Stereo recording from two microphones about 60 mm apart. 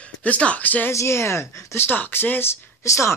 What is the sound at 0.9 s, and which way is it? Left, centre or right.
Speech, left.